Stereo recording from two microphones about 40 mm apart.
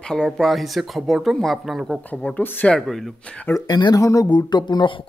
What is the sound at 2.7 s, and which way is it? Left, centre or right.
Speech, centre.